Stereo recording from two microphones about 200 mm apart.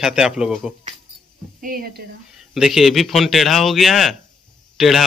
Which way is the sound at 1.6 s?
45° right (ahead or behind).